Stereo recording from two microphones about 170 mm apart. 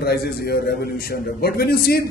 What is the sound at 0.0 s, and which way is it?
A man's voice, 65° left (ahead or behind).